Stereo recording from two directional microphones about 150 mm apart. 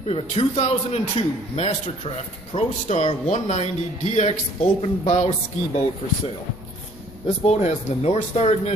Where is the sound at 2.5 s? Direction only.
45° left (ahead or behind).